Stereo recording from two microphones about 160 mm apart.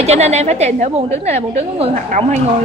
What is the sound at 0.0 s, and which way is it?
A woman's voice, 40° right (ahead or behind).